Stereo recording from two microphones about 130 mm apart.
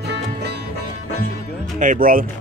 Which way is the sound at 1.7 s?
85° right.